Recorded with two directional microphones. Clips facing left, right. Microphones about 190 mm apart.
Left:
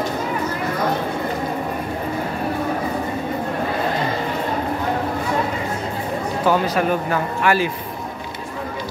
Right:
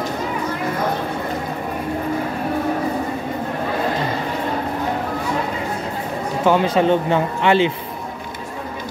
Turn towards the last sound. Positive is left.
turn(degrees=-25)  # may be behind; listen again after turning